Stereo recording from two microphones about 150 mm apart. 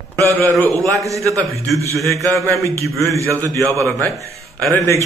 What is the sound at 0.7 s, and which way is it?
A man's voice, 20° right (ahead or behind).